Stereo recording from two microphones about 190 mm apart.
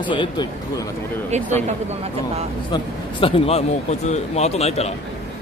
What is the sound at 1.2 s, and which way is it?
Speech, 35° right (ahead or behind).